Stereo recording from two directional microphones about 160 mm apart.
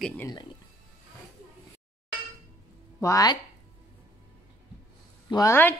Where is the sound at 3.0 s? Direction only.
20° left (ahead or behind).